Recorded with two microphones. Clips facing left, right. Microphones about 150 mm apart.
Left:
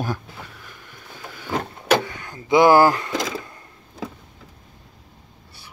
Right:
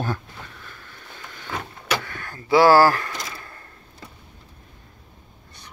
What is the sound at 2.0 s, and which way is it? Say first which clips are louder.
Speech: left 1 dB; 15° left (ahead or behind).